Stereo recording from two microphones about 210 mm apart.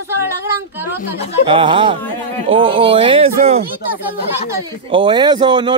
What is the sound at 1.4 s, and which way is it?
A man's voice, 25° right (ahead or behind).